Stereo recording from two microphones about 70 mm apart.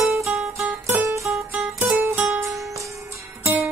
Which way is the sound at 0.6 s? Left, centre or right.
Right.